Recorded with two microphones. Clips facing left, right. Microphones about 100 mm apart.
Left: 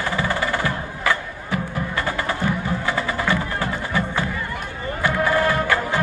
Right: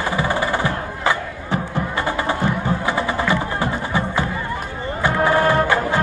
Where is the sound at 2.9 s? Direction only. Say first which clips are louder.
Right 2 dB; 20° right (ahead or behind).